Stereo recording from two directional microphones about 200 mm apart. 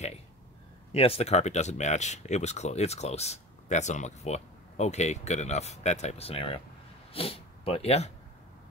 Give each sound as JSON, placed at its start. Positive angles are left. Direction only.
{"t": 0.9, "sound": "speech", "side_deg": 30}